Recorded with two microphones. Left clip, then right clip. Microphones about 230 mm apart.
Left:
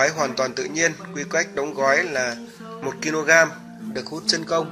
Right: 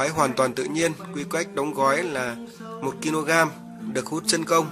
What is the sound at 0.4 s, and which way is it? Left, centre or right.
A man's voice, right.